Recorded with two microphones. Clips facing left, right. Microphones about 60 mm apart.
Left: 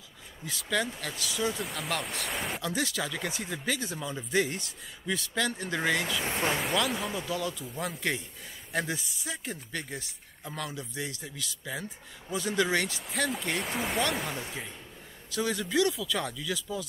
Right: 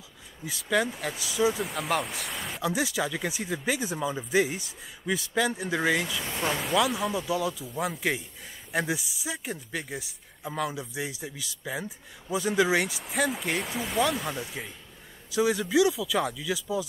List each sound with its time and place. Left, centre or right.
0.5 s speech: centre
1.6 s speech: centre
2.7 s speech: centre
6.2 s speech: centre
6.5 s speech: centre
15.3 s speech: centre